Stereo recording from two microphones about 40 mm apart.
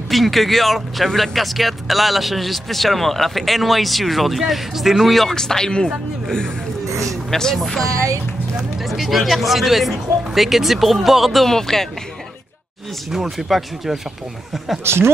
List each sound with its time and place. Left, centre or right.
0.1 s speech: centre
5.3 s speech: centre
7.2 s speech: centre
7.5 s speech: centre
11.4 s speech: centre
13.1 s speech: centre
14.8 s speech: right